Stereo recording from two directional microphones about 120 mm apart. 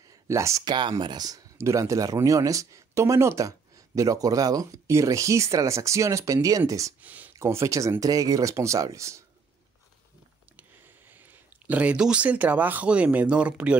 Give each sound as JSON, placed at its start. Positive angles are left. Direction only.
{"t": 0.3, "sound": "speech", "side_deg": -25}
{"t": 0.7, "sound": "speech", "side_deg": -40}
{"t": 7.0, "sound": "speech", "side_deg": -15}
{"t": 11.1, "sound": "speech", "side_deg": -15}